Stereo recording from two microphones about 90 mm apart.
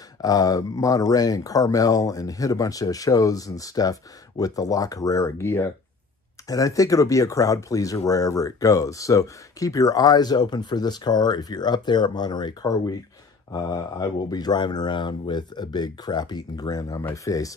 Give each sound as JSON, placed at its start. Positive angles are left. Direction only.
{"t": 0.2, "sound": "speech", "side_deg": 45}
{"t": 6.4, "sound": "speech", "side_deg": 40}
{"t": 12.6, "sound": "speech", "side_deg": 40}